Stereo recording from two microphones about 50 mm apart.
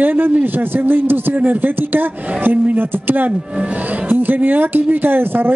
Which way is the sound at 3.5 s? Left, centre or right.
Right.